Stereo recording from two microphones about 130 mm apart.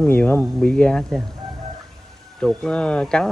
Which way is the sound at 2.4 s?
5° left (ahead or behind).